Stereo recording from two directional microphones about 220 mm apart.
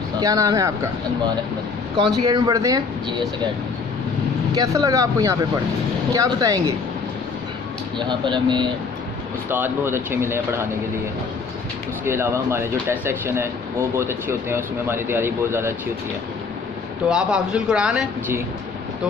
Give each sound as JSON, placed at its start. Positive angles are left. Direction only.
{"t": 0.2, "sound": "speech", "side_deg": -15}
{"t": 2.0, "sound": "speech", "side_deg": -20}
{"t": 4.5, "sound": "speech", "side_deg": -15}
{"t": 8.0, "sound": "speech", "side_deg": -20}
{"t": 9.5, "sound": "speech", "side_deg": -10}
{"t": 12.0, "sound": "speech", "side_deg": -10}
{"t": 17.1, "sound": "speech", "side_deg": -5}